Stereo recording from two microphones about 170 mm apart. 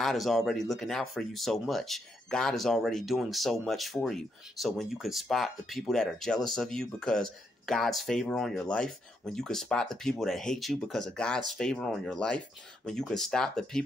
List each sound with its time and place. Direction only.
0.0 s speech: centre (ahead or behind)